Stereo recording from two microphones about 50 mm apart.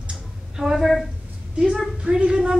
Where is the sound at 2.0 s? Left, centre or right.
Centre.